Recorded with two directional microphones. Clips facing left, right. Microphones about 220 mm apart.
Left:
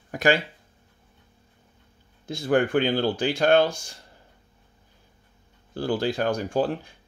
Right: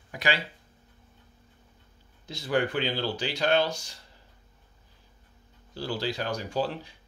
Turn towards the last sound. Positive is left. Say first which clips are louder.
# left 5 dB
turn(degrees=50)  # may be behind; listen again after turning